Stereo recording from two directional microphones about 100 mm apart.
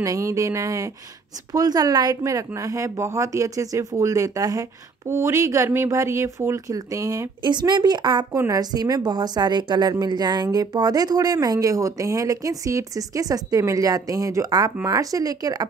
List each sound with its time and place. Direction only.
0.0 s a woman's voice: 35° right (ahead or behind)
7.4 s a woman's voice: 45° right (ahead or behind)